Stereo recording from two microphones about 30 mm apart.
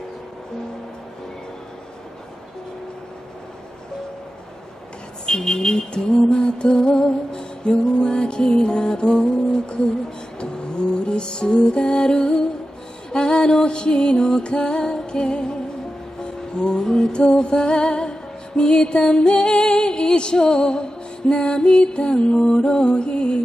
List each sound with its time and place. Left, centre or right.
5.2 s speech: left
5.9 s music: left
10.4 s music: left